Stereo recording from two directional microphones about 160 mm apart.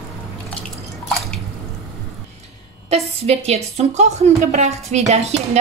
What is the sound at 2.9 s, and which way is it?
A woman's voice, 40° right (ahead or behind).